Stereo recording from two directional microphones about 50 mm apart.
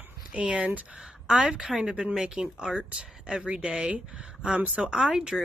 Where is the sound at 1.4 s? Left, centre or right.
Centre.